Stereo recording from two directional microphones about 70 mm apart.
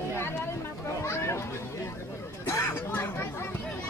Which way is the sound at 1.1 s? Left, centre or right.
Left.